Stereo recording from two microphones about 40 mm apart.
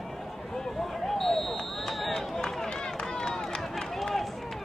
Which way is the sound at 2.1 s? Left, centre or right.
Centre.